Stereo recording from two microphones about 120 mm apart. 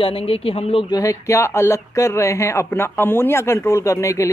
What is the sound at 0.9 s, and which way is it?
Speech, 30° left (ahead or behind).